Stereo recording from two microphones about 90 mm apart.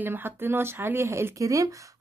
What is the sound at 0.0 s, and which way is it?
Speech, 25° right (ahead or behind).